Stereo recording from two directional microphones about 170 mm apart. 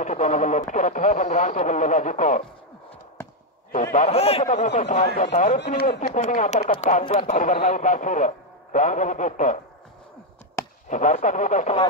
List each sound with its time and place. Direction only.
0.0 s speech: 45° left (ahead or behind)
3.9 s speech: 40° left (ahead or behind)
10.9 s speech: 45° left (ahead or behind)